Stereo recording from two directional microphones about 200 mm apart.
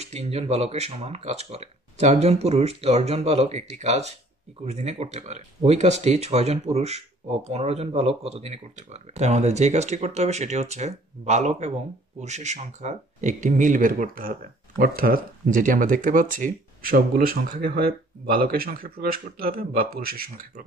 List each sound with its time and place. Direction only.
0.0 s speech: 30° right (ahead or behind); by 20.6 s 50° right (ahead or behind)